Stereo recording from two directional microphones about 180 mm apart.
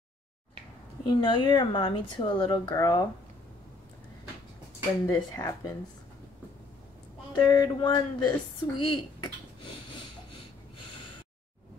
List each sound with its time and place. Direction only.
1.0 s speech: 25° left (ahead or behind)
5.0 s speech: 15° left (ahead or behind)
7.3 s speech: 20° left (ahead or behind)